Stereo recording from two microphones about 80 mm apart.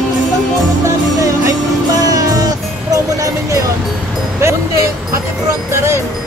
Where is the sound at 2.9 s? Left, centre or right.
Right.